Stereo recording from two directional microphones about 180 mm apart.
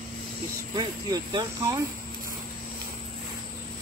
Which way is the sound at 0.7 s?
25° right (ahead or behind).